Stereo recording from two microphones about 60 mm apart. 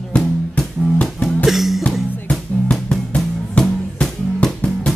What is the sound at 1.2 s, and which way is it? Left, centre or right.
Music, centre.